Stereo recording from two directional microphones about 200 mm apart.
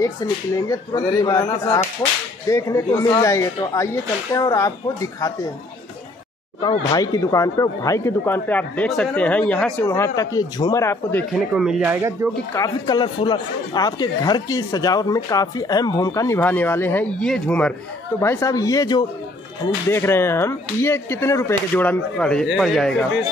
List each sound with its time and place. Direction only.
0.6 s speech: 15° left (ahead or behind)
6.6 s speech: 20° left (ahead or behind)
11.5 s speech: 5° right (ahead or behind)
12.5 s speech: 20° left (ahead or behind); by 22.9 s centre (ahead or behind)